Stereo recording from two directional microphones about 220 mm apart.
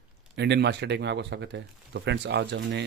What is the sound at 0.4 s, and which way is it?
Speech, 50° right (ahead or behind).